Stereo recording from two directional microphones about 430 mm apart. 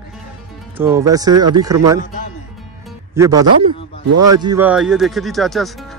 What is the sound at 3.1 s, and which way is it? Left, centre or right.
Speech, centre.